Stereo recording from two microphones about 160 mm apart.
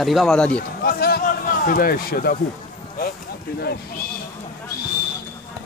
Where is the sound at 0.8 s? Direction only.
75° left (ahead or behind).